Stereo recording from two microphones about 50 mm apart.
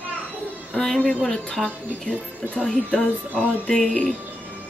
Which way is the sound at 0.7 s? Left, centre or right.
Centre.